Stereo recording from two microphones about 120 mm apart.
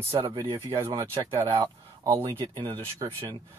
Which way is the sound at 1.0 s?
25° right (ahead or behind).